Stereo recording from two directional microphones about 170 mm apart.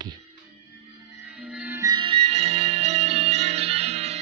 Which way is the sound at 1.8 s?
25° right (ahead or behind).